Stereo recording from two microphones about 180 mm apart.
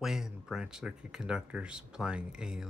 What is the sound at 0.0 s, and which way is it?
Speech, centre (ahead or behind).